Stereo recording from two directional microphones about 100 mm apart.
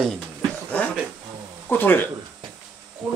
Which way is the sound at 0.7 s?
15° left (ahead or behind).